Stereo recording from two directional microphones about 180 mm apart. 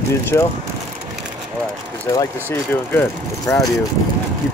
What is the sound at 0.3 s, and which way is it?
Speech, 15° left (ahead or behind).